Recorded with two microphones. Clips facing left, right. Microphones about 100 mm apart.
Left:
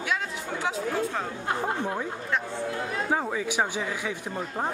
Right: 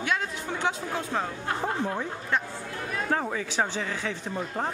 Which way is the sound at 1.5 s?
20° left (ahead or behind).